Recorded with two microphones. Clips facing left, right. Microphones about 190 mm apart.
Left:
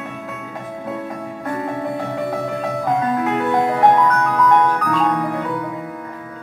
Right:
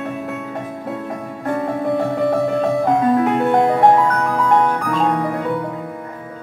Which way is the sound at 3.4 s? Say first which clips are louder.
Right 2 dB; 30° right (ahead or behind).